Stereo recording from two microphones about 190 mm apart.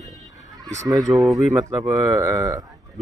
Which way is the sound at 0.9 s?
20° right (ahead or behind).